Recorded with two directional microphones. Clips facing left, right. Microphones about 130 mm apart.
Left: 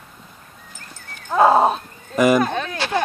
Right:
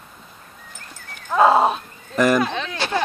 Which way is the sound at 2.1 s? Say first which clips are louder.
Left 2 dB; 10° left (ahead or behind).